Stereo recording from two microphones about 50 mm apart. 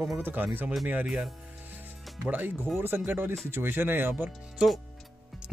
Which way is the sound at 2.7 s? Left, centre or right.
Right.